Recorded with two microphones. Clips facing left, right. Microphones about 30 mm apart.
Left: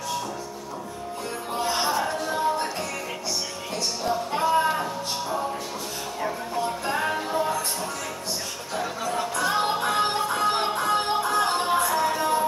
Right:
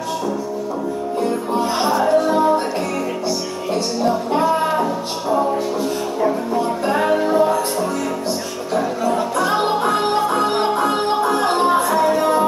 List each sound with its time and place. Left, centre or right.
1.8 s music: centre
2.1 s music: right
4.3 s music: centre
6.9 s music: centre
9.1 s music: centre
12.2 s music: right